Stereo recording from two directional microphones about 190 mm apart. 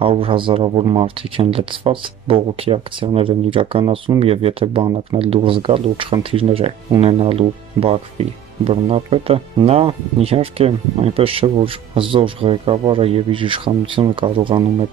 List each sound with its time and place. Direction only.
0.0 s speech: 30° right (ahead or behind)